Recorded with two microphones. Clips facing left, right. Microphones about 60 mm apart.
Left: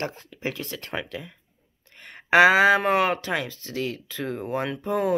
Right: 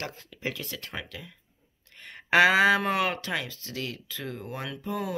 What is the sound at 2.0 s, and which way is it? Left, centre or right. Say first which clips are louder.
Speech: left 4 dB; centre.